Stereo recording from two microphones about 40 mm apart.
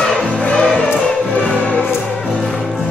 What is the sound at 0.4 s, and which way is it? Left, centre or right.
Music, left.